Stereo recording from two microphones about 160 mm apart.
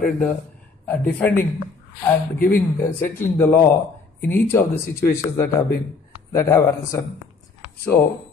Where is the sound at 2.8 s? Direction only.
15° left (ahead or behind).